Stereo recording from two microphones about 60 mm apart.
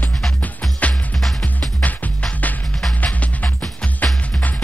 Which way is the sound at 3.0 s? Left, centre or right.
Left.